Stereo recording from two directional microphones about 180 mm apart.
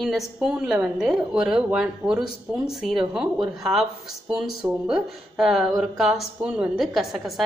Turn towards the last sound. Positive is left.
turn(degrees=0)  # may be behind; listen again after turning